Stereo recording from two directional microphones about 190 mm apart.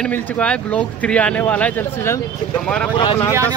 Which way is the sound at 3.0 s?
20° left (ahead or behind).